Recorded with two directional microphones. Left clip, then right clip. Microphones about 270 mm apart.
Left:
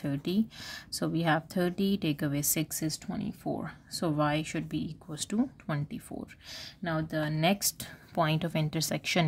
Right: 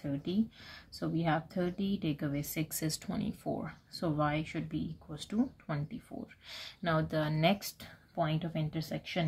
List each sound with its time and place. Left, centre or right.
0.0 s speech: left